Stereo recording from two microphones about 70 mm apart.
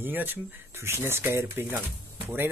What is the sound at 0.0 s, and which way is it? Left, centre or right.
Speech, right.